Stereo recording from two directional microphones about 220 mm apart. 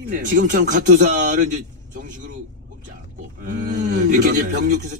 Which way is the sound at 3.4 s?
35° right (ahead or behind).